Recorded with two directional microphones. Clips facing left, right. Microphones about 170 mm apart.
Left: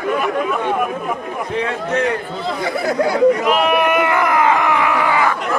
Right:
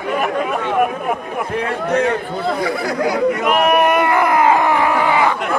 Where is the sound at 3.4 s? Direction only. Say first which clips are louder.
Right 1 dB; 45° right (ahead or behind); by 5.3 s 25° right (ahead or behind).